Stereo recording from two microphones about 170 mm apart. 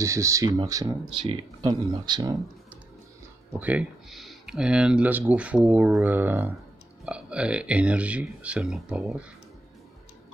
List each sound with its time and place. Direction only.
0.0 s speech: 15° right (ahead or behind)
3.5 s speech: 10° right (ahead or behind)